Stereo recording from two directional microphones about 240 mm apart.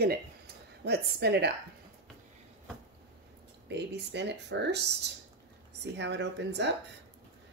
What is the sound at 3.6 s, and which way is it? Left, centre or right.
Speech, right.